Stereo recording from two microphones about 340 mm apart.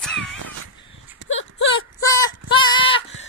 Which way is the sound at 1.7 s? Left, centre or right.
Centre.